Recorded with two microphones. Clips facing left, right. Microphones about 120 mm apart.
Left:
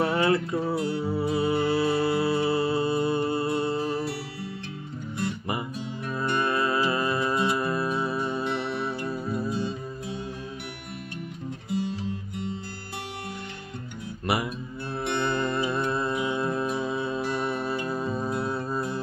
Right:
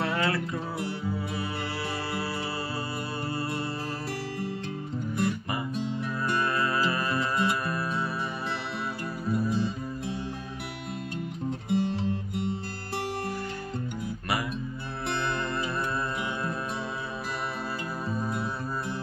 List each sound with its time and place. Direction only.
0.0 s music: 25° left (ahead or behind)
6.2 s music: 25° left (ahead or behind)
11.7 s music: 55° right (ahead or behind)
15.1 s music: 25° left (ahead or behind)